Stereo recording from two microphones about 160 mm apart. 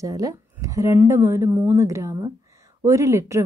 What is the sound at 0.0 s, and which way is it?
A woman's voice, 20° right (ahead or behind).